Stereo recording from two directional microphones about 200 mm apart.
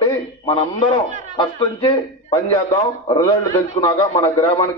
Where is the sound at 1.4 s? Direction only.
25° left (ahead or behind).